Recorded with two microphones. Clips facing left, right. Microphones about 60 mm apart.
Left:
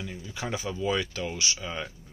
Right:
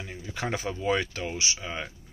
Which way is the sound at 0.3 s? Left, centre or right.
Right.